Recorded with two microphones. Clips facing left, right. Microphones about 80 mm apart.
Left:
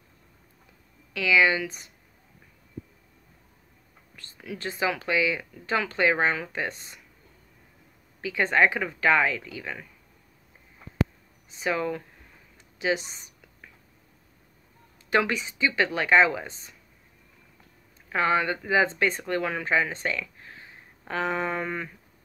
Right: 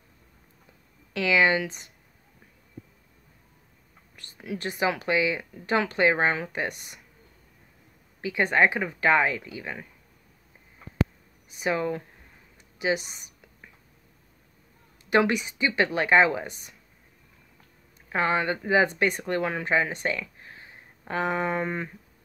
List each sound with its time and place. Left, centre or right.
1.1 s speech: right
4.4 s speech: right
8.2 s speech: right
11.6 s speech: right
13.0 s a woman's voice: left
15.0 s speech: right
18.1 s speech: right